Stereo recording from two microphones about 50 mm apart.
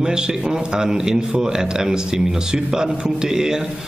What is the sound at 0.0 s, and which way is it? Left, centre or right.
Speech, centre.